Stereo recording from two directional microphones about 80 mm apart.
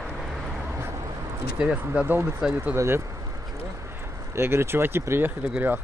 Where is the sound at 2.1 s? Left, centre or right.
Right.